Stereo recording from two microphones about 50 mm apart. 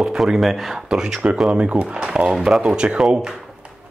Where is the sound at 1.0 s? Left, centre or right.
Centre.